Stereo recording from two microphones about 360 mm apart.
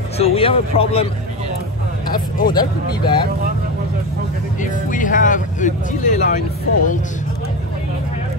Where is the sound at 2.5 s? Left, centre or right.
Centre.